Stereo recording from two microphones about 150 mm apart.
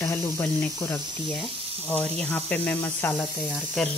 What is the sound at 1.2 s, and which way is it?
Speech, centre (ahead or behind).